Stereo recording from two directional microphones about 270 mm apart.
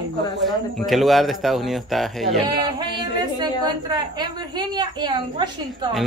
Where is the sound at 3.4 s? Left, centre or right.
Centre.